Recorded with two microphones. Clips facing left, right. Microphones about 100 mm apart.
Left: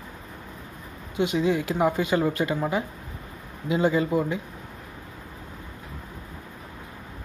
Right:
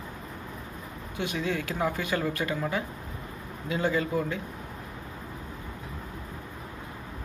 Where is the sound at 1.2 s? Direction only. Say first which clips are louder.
Left 7 dB; 15° left (ahead or behind).